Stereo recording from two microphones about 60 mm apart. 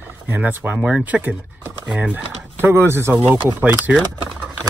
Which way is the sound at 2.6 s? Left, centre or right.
Right.